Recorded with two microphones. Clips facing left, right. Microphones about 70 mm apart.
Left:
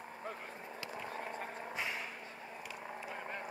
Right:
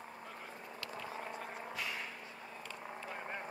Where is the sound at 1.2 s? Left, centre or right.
Left.